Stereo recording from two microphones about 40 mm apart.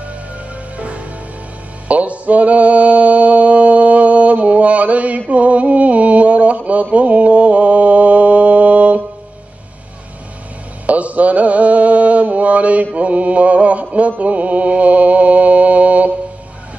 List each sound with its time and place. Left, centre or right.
0.7 s music: right
5.3 s mantra: right
10.9 s mantra: right
14.1 s music: right